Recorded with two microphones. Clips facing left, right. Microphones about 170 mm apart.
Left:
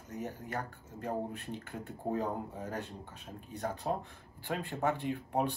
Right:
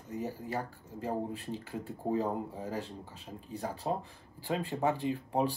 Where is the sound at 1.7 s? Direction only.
Centre (ahead or behind).